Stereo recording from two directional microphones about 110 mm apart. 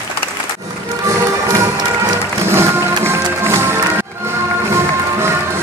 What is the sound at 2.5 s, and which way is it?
Music, 20° right (ahead or behind).